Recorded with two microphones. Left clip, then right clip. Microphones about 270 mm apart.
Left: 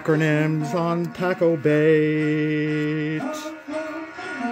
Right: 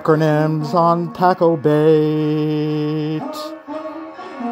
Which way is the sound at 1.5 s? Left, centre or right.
Centre.